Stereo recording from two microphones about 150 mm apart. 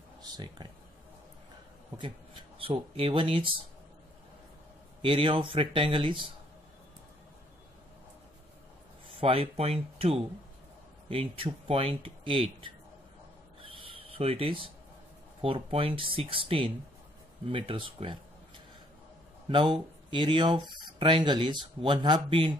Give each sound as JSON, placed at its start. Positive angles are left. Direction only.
{"t": 0.2, "sound": "speech", "side_deg": -30}
{"t": 2.6, "sound": "speech", "side_deg": -35}
{"t": 5.0, "sound": "speech", "side_deg": -35}
{"t": 9.2, "sound": "speech", "side_deg": -40}
{"t": 13.6, "sound": "a sound", "side_deg": -35}
{"t": 15.4, "sound": "speech", "side_deg": -35}
{"t": 19.5, "sound": "speech", "side_deg": -30}